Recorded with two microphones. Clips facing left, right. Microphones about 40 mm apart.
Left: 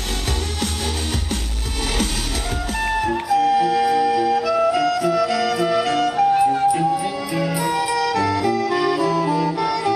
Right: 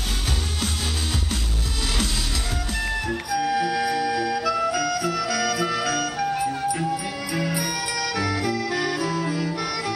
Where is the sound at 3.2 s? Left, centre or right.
Left.